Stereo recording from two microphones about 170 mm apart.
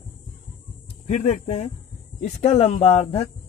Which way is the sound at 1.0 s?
40° left (ahead or behind).